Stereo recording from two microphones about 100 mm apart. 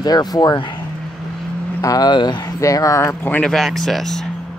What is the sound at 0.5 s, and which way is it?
Speech, 55° left (ahead or behind).